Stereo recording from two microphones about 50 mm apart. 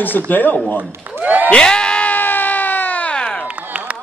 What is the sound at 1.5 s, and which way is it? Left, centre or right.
Crowd, centre.